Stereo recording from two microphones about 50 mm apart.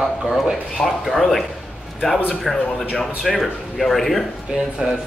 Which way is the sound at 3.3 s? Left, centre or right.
Centre.